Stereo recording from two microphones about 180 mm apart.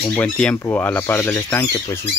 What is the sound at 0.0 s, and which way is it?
Speech, 10° left (ahead or behind).